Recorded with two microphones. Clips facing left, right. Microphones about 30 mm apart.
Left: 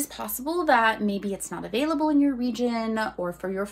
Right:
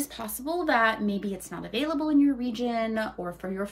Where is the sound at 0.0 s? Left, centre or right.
Left.